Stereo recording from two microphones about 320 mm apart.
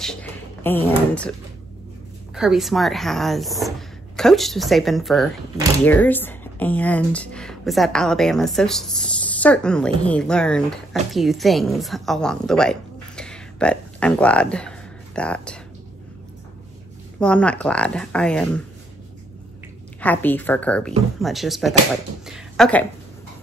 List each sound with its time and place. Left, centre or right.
0.0 s speech: centre
2.3 s a woman's voice: centre
17.2 s a woman's voice: centre
20.0 s a woman's voice: centre
22.2 s a sound: centre